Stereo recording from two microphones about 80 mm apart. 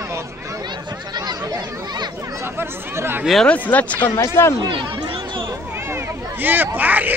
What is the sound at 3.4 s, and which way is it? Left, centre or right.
Speech, centre.